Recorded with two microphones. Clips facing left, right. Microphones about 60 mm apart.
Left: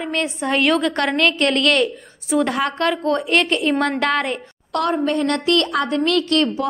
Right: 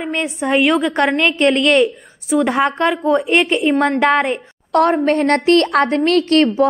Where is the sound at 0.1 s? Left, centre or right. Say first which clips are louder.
Right 4 dB; centre.